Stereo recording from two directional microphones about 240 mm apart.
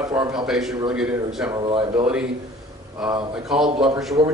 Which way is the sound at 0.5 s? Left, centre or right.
Centre.